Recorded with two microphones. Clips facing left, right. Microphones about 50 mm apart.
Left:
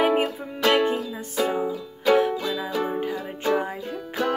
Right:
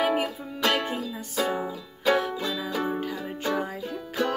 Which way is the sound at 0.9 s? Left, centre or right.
Centre.